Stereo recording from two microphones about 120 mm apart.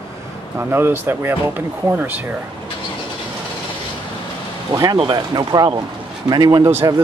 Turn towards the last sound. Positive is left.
turn(degrees=-25)  # may be behind; listen again after turning